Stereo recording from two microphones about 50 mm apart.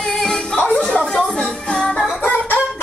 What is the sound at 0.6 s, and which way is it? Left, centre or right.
Music, left.